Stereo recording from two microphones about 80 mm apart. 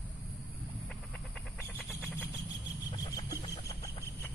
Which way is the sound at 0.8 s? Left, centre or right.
Centre.